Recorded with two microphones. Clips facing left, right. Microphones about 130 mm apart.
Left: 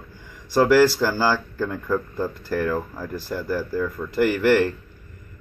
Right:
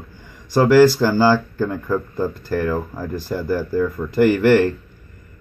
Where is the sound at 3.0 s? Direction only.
20° right (ahead or behind).